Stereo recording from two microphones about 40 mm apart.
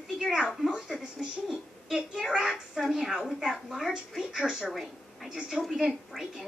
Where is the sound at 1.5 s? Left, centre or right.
Centre.